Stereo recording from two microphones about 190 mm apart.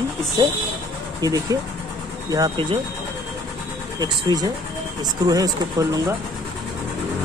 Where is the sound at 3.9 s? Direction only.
20° right (ahead or behind).